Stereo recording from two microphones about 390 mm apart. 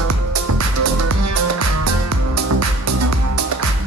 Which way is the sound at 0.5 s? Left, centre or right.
Right.